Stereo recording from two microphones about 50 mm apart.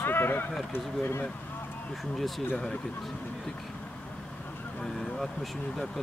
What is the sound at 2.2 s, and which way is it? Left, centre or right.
Speech, centre.